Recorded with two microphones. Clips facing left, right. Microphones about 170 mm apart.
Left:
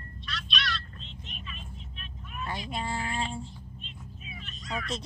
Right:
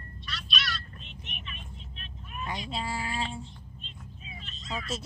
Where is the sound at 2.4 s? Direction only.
15° right (ahead or behind).